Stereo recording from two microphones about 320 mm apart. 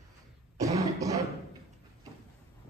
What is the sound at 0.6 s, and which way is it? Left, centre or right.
Cough, centre.